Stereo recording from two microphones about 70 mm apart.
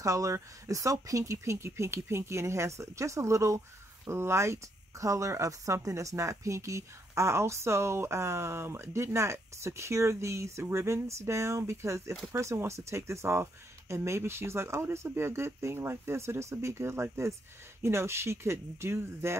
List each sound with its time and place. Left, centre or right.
0.0 s speech: right